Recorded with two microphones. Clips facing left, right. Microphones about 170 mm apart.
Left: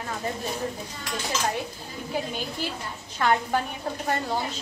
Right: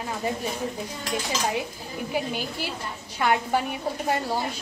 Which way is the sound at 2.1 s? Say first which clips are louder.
Right 1 dB; 10° right (ahead or behind).